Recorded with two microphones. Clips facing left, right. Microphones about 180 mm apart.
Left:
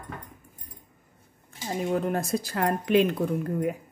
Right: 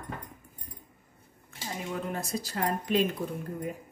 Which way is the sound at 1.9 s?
50° left (ahead or behind).